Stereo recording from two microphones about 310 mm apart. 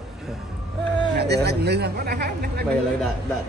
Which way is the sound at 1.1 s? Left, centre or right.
Right.